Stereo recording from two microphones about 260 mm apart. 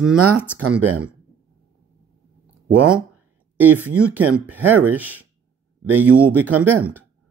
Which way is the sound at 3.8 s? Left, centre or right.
Centre.